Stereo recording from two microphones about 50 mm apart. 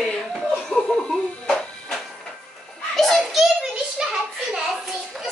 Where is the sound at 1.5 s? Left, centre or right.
Centre.